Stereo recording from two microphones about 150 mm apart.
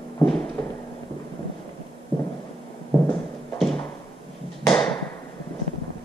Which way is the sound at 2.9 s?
25° left (ahead or behind).